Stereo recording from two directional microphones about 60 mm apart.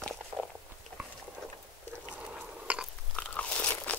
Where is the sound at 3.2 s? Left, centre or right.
Centre.